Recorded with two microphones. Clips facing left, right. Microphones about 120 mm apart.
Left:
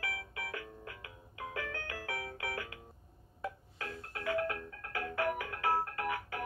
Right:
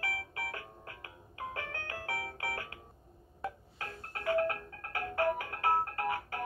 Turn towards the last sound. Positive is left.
turn(degrees=-35)  # may be behind; listen again after turning